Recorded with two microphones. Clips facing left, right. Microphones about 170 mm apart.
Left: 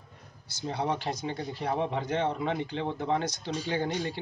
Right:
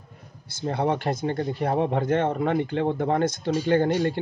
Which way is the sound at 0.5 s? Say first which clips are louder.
Right 6 dB; 55° right (ahead or behind).